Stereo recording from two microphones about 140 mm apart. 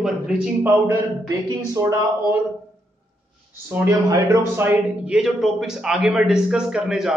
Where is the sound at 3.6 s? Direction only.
20° right (ahead or behind).